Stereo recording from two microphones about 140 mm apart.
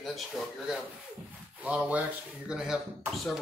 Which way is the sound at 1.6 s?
10° right (ahead or behind).